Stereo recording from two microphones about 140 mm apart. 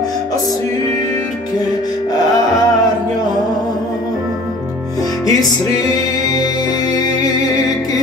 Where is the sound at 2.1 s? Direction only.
25° left (ahead or behind).